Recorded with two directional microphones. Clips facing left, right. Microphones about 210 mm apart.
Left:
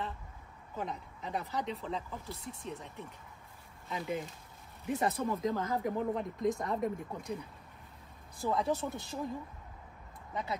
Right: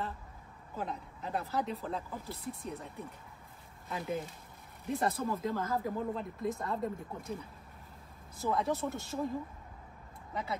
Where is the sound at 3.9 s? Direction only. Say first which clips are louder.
Even; centre (ahead or behind).